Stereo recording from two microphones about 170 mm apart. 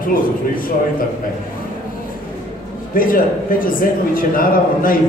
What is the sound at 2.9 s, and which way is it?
A man's voice, 55° left (ahead or behind).